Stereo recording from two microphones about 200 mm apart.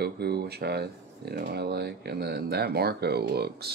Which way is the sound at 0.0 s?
55° right (ahead or behind).